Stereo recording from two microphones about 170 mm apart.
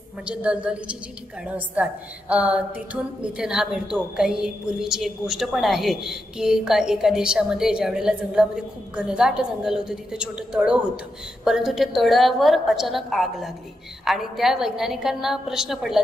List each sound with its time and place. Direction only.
0.2 s a woman's voice: 5° right (ahead or behind)